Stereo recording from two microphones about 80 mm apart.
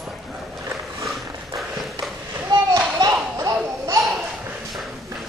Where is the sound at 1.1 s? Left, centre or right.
Centre.